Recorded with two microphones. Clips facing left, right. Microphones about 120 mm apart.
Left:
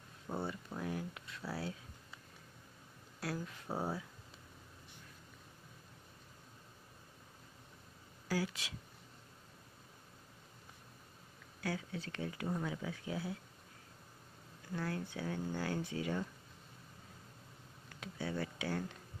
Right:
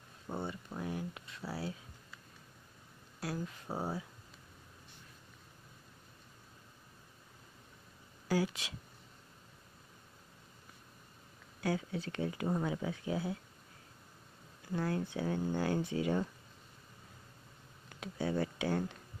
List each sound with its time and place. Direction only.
0.3 s speech: centre (ahead or behind)
3.2 s speech: 5° right (ahead or behind)
8.3 s speech: 20° right (ahead or behind)
11.6 s speech: 20° right (ahead or behind)
12.4 s speech: 30° right (ahead or behind)
14.7 s speech: 25° right (ahead or behind)
18.0 s speech: 30° right (ahead or behind)